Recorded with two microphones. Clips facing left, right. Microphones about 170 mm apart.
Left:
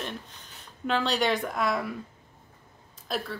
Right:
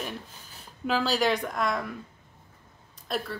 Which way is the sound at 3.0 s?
Centre (ahead or behind).